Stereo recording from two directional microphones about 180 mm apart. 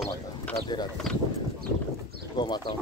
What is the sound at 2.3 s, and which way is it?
Speech, 25° left (ahead or behind).